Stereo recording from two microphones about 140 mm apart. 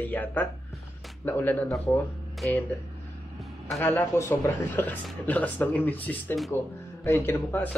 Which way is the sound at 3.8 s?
15° left (ahead or behind).